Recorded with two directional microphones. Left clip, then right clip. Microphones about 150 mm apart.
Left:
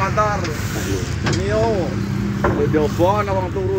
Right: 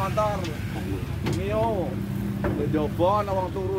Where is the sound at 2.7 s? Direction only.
30° right (ahead or behind).